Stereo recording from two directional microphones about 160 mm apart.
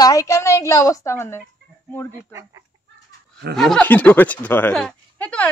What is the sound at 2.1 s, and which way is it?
Speech, 20° right (ahead or behind).